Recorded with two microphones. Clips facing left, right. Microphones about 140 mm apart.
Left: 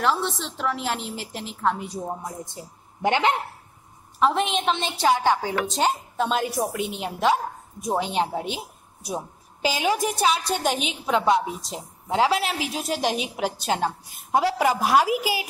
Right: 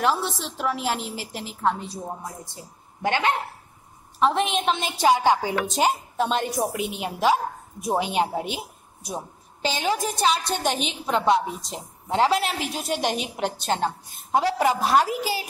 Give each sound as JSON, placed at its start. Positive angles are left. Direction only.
{"t": 0.0, "sound": "speech", "side_deg": -5}
{"t": 1.8, "sound": "a woman's voice", "side_deg": 15}
{"t": 4.2, "sound": "speech", "side_deg": 0}